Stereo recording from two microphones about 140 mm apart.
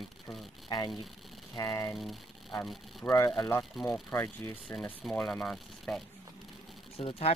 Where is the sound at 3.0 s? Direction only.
20° left (ahead or behind); by 6.0 s 5° left (ahead or behind).